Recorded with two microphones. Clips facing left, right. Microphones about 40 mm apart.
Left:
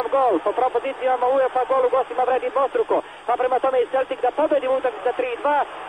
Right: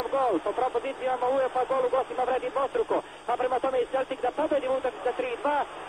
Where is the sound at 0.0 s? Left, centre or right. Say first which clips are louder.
Left 7 dB; left.